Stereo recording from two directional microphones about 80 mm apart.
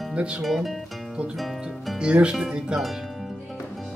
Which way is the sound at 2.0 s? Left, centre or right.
Centre.